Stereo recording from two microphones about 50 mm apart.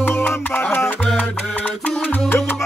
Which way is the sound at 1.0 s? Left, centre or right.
Left.